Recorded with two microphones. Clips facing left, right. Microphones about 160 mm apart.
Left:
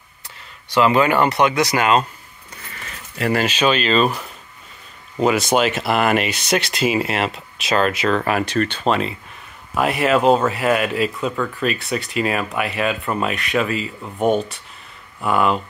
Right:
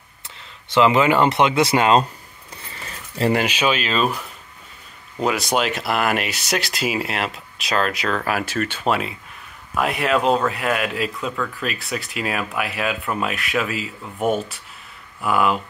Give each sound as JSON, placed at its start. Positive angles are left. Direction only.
{"t": 0.7, "sound": "speech", "side_deg": -20}
{"t": 2.7, "sound": "keys jangling", "side_deg": -30}
{"t": 3.3, "sound": "speech", "side_deg": -10}
{"t": 5.2, "sound": "speech", "side_deg": 0}